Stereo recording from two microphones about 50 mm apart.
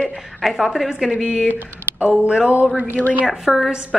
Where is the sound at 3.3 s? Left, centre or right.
Centre.